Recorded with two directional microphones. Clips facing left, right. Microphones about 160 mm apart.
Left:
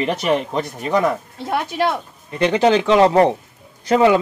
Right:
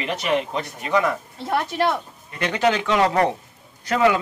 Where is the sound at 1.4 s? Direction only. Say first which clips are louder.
Left 1 dB; 10° left (ahead or behind).